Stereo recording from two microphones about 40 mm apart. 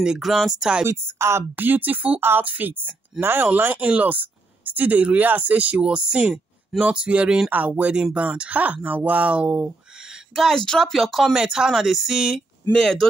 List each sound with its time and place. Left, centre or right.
0.0 s speech: centre
0.8 s speech: right
1.6 s speech: right
3.2 s speech: right
3.7 s speech: right
10.5 s speech: centre
11.3 s speech: centre
12.7 s speech: centre